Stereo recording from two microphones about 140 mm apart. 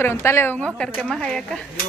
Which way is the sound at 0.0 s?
20° left (ahead or behind).